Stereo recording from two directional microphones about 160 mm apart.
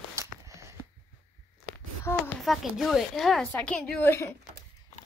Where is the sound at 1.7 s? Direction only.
15° left (ahead or behind).